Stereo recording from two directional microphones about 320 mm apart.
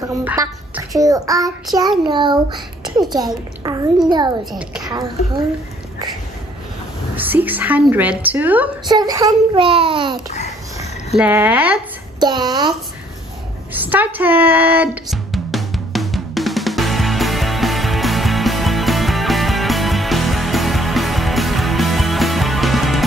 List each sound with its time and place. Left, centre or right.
0.2 s child singing: centre
4.5 s a woman's voice: centre
7.2 s a woman's voice: centre
11.1 s a child's voice: centre
13.8 s drum: centre